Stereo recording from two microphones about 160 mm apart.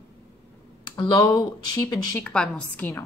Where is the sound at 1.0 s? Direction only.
25° left (ahead or behind).